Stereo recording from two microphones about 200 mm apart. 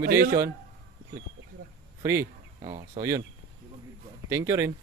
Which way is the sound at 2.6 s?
35° right (ahead or behind).